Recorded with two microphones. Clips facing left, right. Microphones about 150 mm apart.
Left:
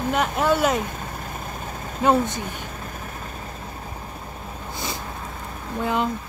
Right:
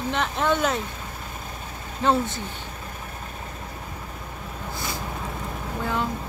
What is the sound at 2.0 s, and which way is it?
Speech, 15° left (ahead or behind).